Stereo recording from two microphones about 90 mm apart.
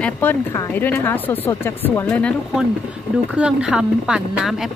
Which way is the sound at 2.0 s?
15° left (ahead or behind).